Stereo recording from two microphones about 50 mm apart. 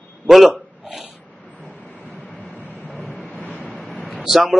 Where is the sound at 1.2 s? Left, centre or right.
Left.